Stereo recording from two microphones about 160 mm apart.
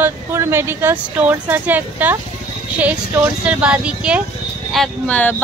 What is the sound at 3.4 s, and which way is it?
Speech, 5° right (ahead or behind).